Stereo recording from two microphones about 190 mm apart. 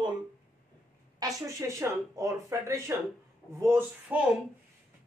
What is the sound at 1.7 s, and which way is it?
Speech, 15° right (ahead or behind).